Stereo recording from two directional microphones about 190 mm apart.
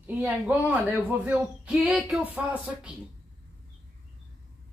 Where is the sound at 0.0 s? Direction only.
10° right (ahead or behind).